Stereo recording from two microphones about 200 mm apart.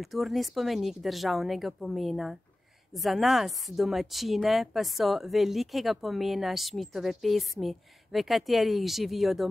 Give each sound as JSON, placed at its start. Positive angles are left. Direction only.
{"t": 0.0, "sound": "a woman's voice", "side_deg": 0}